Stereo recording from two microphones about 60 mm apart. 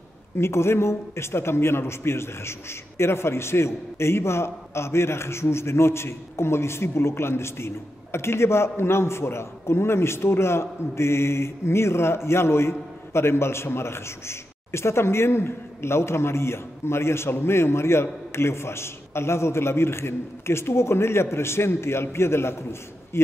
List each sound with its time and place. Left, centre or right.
0.4 s speech: left